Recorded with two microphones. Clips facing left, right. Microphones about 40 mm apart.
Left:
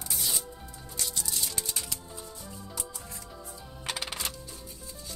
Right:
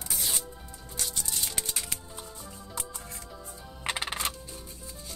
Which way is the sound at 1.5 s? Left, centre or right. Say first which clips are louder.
Right 1 dB; right.